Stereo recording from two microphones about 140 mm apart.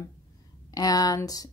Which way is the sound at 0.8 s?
25° left (ahead or behind).